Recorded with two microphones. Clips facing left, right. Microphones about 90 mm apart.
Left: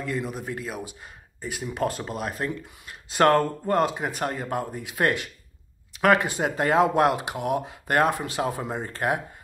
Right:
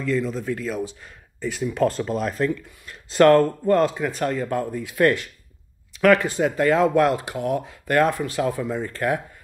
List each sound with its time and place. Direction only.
0.0 s speech: 15° left (ahead or behind)